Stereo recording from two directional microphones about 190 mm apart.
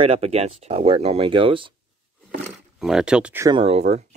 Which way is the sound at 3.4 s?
30° right (ahead or behind).